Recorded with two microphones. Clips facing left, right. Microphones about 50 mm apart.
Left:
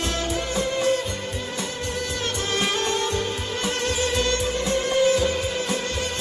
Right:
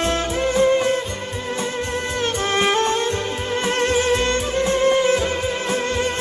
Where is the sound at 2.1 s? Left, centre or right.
Right.